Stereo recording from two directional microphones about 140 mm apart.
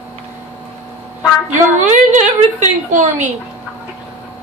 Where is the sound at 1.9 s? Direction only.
55° right (ahead or behind).